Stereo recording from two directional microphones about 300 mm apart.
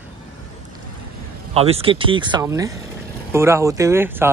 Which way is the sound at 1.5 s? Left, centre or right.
Centre.